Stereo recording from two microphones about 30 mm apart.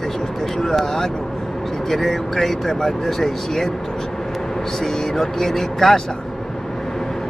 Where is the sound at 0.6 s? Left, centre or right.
Centre.